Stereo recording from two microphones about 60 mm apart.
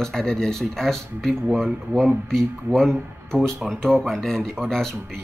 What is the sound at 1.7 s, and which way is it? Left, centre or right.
Speech, right.